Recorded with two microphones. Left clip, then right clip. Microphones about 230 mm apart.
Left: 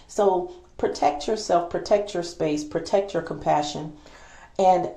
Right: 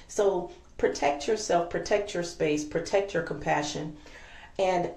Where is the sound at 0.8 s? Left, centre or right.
Centre.